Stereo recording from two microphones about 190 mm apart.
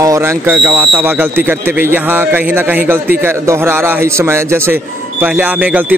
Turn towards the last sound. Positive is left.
turn(degrees=-10)  # may be behind; listen again after turning